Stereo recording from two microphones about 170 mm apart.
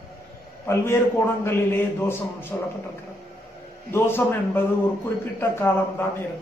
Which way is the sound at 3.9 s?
15° left (ahead or behind).